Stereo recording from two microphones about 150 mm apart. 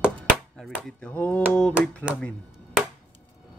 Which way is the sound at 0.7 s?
10° left (ahead or behind).